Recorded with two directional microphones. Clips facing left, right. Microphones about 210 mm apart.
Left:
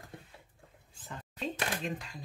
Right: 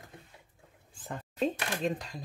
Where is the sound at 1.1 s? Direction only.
45° right (ahead or behind).